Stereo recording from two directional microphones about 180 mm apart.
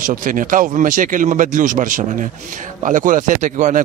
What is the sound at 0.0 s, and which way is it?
Speech, 45° right (ahead or behind).